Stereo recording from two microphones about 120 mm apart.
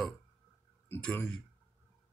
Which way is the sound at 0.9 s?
20° left (ahead or behind).